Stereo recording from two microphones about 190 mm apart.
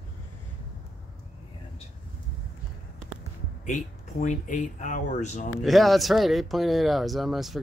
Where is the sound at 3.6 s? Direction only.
40° left (ahead or behind).